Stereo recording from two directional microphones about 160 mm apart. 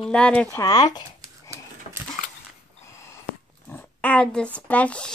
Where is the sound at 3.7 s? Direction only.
10° left (ahead or behind).